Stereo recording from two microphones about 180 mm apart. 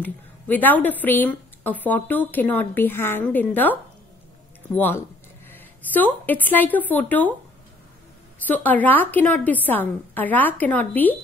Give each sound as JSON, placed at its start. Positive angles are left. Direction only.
{"t": 0.0, "sound": "a woman's voice", "side_deg": 10}
{"t": 4.7, "sound": "a woman's voice", "side_deg": 10}
{"t": 8.5, "sound": "a woman's voice", "side_deg": 10}